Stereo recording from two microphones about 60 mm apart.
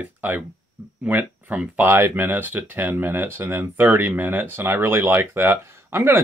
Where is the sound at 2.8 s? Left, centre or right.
Right.